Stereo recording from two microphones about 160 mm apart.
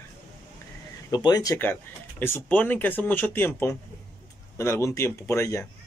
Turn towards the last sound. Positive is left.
turn(degrees=15)  # may be behind; listen again after turning